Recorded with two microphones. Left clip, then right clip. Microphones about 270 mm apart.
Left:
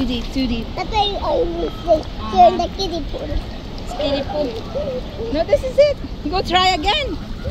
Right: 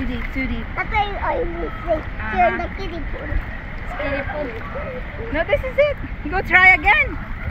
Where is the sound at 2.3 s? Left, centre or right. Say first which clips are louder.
Left 6 dB; right.